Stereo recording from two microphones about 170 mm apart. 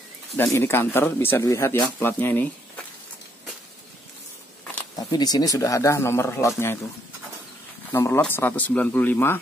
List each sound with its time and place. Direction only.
0.4 s speech: 15° left (ahead or behind)
4.9 s speech: 25° left (ahead or behind)
7.9 s speech: 15° left (ahead or behind)